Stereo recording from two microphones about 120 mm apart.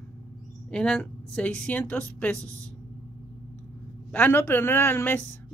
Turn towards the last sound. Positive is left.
turn(degrees=15)  # may be behind; listen again after turning